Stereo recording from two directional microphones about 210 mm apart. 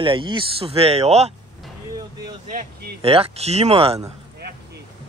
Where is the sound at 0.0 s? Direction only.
25° right (ahead or behind).